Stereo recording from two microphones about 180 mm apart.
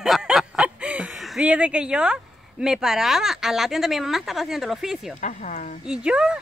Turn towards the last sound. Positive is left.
turn(degrees=-5)  # may be behind; listen again after turning